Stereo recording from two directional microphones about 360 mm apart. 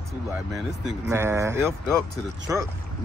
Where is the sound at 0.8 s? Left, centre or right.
Centre.